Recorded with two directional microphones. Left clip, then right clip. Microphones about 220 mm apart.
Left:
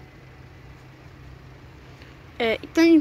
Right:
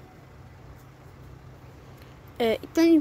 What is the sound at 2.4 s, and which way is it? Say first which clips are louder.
Speech: left 2 dB; 15° right (ahead or behind).